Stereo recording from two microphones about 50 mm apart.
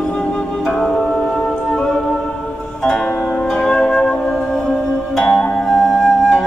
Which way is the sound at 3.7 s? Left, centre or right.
Centre.